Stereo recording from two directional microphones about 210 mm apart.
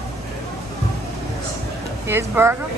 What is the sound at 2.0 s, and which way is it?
Speech, 10° right (ahead or behind).